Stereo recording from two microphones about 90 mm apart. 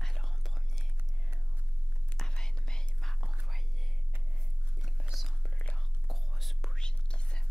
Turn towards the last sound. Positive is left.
turn(degrees=10)  # may be behind; listen again after turning